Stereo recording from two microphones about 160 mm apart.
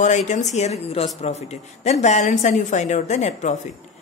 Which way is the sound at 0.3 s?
45° left (ahead or behind).